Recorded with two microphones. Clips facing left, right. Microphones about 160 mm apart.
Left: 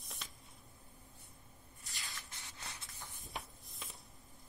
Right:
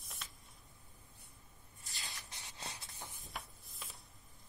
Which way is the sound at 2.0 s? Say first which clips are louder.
Even; 20° right (ahead or behind).